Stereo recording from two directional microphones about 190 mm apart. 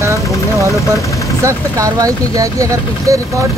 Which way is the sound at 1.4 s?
15° right (ahead or behind).